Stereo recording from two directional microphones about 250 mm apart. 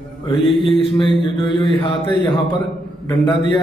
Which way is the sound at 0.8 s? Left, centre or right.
Left.